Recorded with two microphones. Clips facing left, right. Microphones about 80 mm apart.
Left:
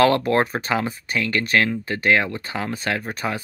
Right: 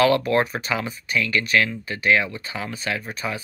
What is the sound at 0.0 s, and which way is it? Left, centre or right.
Speech, left.